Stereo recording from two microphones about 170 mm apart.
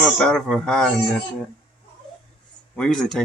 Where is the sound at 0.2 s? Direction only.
5° left (ahead or behind).